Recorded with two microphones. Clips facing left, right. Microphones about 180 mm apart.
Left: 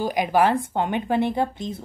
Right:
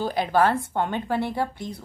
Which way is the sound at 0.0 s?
15° left (ahead or behind).